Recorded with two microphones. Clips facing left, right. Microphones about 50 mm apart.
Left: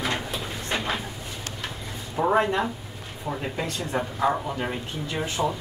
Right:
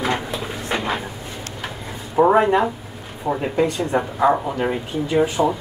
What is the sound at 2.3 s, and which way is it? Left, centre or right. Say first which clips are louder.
Speech: right 6 dB; centre.